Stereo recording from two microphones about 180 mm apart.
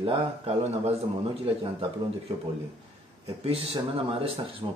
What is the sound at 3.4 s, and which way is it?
Speech, 35° right (ahead or behind).